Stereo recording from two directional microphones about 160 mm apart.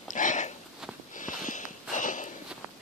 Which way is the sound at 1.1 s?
55° left (ahead or behind).